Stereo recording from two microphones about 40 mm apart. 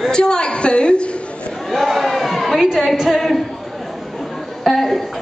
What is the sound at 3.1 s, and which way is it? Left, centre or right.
Speech, centre.